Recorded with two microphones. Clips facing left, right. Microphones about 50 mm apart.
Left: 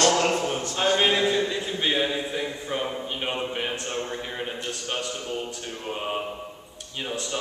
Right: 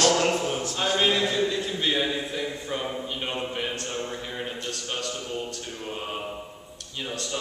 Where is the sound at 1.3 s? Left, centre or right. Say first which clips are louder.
Left 1 dB; centre.